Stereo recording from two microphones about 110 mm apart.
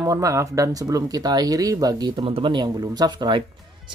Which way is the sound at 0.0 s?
30° right (ahead or behind).